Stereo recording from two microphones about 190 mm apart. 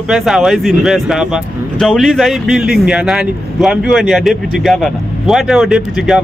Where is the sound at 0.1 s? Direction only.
Centre (ahead or behind).